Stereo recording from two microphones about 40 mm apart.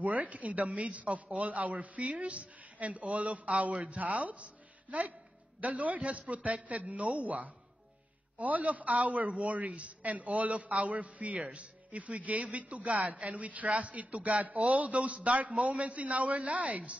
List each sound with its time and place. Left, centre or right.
0.0 s a man's voice: right
5.6 s a man's voice: right